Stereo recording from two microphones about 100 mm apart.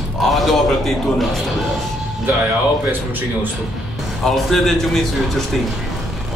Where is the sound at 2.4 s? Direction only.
20° right (ahead or behind).